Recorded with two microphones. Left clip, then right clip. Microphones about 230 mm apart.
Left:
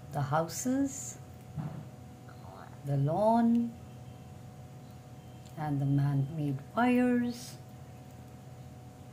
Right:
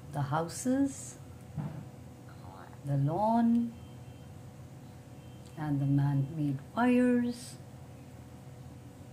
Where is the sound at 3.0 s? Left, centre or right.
Centre.